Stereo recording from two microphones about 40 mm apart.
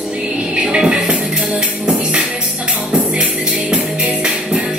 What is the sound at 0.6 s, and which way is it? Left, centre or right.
Music, right.